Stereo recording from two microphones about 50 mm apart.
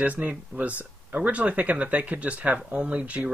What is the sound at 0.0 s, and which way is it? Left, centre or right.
Speech, right.